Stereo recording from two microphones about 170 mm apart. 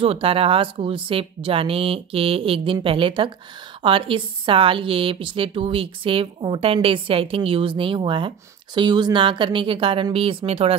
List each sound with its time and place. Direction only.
0.0 s a woman's voice: 35° right (ahead or behind)